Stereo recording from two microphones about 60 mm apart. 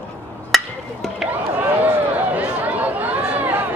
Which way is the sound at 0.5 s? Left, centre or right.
Centre.